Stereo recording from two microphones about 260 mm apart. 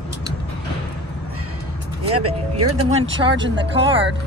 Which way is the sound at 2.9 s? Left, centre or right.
Right.